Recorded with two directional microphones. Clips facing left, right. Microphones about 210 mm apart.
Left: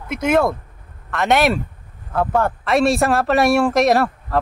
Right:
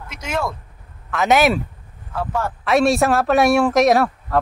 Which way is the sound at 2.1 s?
55° left (ahead or behind).